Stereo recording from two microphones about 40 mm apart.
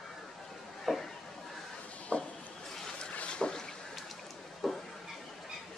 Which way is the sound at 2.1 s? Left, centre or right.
Left.